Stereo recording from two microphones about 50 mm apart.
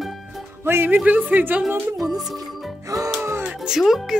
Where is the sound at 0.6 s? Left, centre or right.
Right.